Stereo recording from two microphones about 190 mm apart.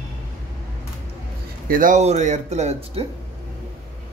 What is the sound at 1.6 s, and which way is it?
Speech, 45° right (ahead or behind).